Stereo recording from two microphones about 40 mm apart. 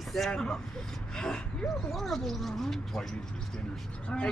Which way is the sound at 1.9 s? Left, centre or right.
Centre.